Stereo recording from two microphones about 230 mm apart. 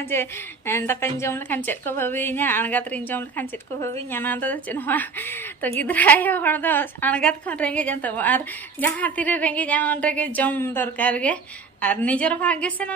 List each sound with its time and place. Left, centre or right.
0.1 s a woman's voice: centre